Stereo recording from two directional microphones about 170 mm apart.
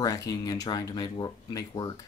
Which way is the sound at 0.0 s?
20° left (ahead or behind).